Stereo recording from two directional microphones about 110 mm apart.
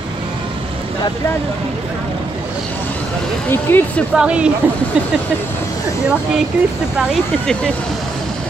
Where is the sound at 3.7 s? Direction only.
20° left (ahead or behind).